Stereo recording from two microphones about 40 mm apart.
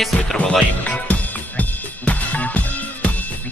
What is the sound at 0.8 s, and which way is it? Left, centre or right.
Music, left.